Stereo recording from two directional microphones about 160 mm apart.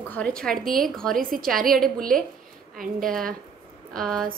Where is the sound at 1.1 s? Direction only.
60° right (ahead or behind).